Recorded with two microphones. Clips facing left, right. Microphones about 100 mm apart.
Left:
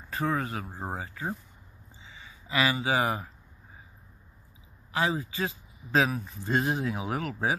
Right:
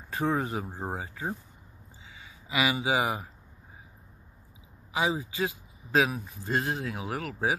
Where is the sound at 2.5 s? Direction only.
15° right (ahead or behind).